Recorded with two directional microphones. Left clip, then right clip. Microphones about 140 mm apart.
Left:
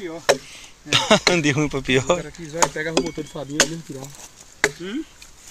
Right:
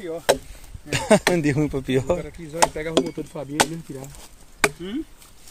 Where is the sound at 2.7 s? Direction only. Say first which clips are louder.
Even; 30° left (ahead or behind).